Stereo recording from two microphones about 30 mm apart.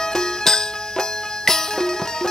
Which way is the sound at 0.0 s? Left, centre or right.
Centre.